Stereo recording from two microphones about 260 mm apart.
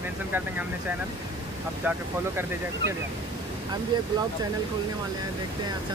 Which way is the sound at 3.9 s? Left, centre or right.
Centre.